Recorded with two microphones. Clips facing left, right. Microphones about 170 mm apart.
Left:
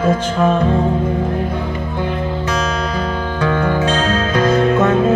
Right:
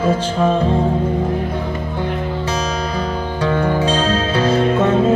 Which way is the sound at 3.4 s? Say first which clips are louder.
Even; 35° right (ahead or behind).